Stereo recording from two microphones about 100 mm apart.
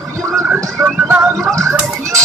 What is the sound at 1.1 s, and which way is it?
Music, 30° right (ahead or behind).